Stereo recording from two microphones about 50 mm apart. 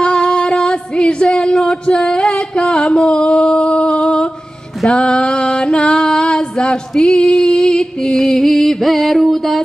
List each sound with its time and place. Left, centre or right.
0.0 s singing: centre
3.1 s a sound: centre
4.8 s music: centre